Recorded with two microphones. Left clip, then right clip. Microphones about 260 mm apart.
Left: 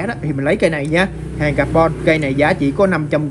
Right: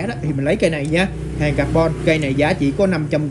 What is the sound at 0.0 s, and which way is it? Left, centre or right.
Speech, centre.